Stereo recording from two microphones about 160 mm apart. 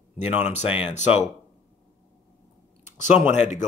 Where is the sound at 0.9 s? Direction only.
45° left (ahead or behind).